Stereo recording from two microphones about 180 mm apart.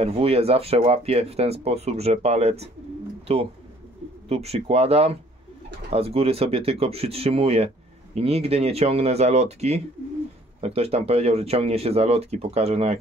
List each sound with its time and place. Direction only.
0.0 s speech: 35° right (ahead or behind)